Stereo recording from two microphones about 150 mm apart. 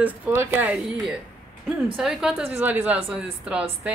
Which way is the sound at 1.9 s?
5° right (ahead or behind).